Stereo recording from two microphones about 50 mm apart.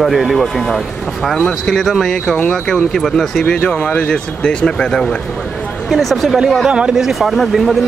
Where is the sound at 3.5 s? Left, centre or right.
Left.